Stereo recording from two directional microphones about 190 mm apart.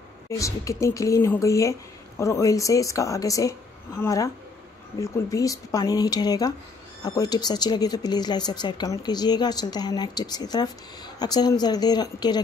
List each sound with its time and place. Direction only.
0.3 s speech: 15° left (ahead or behind)